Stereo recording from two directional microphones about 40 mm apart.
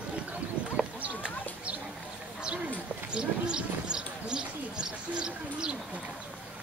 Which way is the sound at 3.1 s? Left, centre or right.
Right.